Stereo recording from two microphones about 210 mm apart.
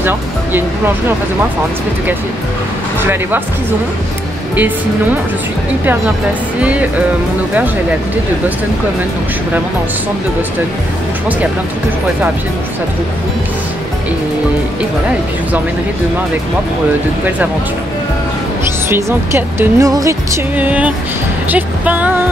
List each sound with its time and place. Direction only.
0.0 s speech: 10° right (ahead or behind)
3.0 s speech: 10° right (ahead or behind)
18.9 s speech: 10° right (ahead or behind)